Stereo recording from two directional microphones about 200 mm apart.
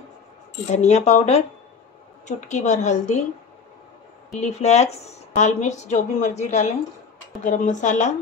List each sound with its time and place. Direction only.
0.7 s a woman's voice: 35° left (ahead or behind)
4.3 s a woman's voice: 35° left (ahead or behind)